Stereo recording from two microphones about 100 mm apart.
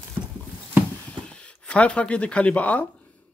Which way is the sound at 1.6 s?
10° left (ahead or behind).